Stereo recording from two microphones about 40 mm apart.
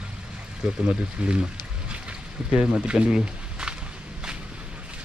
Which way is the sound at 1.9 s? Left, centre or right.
Right.